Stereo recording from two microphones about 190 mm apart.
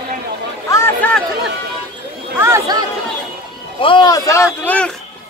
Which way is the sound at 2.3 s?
15° right (ahead or behind).